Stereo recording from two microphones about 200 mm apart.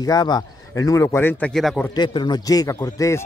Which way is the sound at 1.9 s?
20° left (ahead or behind).